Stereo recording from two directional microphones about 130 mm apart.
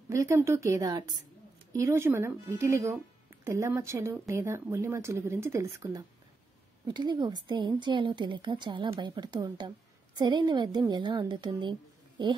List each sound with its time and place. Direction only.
0.1 s speech: 25° right (ahead or behind)
6.9 s a woman's voice: 35° right (ahead or behind)